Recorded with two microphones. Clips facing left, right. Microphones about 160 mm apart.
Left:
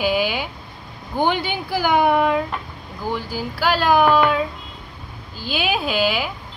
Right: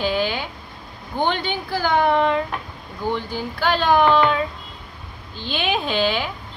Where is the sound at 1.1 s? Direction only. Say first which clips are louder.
Left 2 dB; 10° left (ahead or behind).